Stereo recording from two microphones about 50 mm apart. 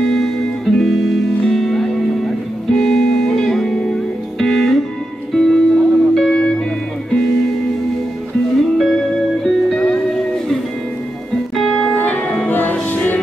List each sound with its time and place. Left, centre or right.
0.0 s music: centre
8.5 s music: centre
11.5 s music: centre
11.9 s music: left